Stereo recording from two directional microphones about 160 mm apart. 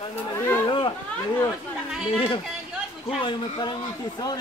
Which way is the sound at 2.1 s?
35° left (ahead or behind).